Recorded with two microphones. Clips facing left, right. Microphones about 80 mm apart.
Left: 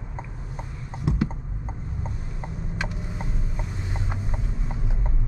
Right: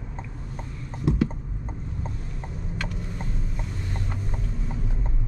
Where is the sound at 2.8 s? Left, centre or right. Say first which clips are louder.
Left 1 dB; centre.